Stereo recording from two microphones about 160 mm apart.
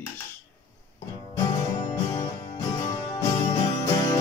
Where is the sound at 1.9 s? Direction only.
20° left (ahead or behind).